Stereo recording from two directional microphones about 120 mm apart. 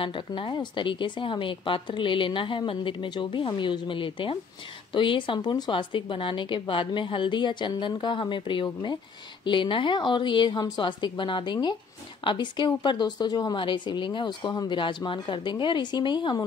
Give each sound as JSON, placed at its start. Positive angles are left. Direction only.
{"t": 0.0, "sound": "a woman's voice", "side_deg": 45}